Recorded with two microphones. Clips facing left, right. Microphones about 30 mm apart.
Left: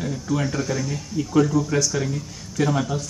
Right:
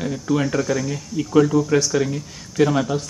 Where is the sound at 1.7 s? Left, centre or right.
Right.